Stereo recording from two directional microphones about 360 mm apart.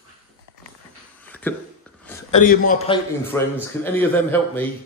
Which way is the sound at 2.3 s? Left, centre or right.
Left.